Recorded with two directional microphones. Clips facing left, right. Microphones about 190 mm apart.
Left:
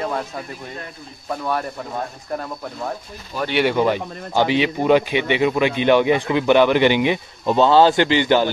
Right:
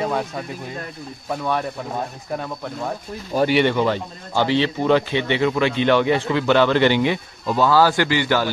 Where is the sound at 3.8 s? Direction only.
15° left (ahead or behind).